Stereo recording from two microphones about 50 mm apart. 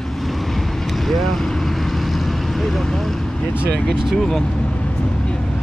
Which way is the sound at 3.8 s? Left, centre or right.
Centre.